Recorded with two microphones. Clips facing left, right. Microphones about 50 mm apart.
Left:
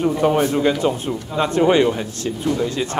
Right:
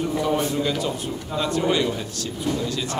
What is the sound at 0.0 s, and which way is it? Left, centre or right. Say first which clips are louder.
A man's voice: left 6 dB; left.